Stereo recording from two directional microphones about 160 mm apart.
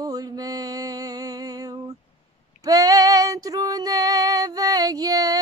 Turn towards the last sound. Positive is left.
turn(degrees=-25)  # may be behind; listen again after turning